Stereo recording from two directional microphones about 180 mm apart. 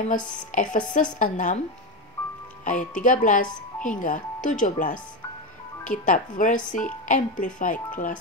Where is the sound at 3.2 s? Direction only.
45° left (ahead or behind).